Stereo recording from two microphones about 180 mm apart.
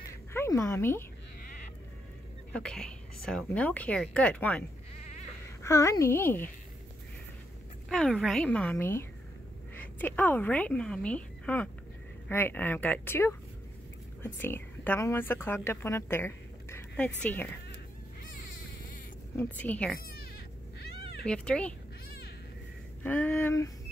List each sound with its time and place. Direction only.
0.0 s a sound: 15° left (ahead or behind)
2.5 s speech: 5° left (ahead or behind)
7.9 s a woman's voice: 5° left (ahead or behind)
19.3 s speech: 10° left (ahead or behind)
21.3 s a woman's voice: 5° left (ahead or behind)
23.0 s speech: 10° left (ahead or behind)